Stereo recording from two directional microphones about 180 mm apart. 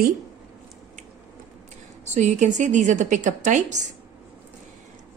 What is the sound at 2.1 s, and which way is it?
A woman's voice, 40° right (ahead or behind).